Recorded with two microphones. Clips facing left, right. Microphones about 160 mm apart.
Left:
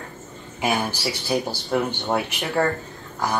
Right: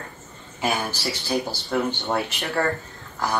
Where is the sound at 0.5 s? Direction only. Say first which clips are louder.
Left 2 dB; 10° left (ahead or behind).